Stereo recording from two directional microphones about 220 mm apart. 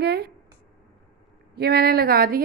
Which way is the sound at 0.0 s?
45° right (ahead or behind).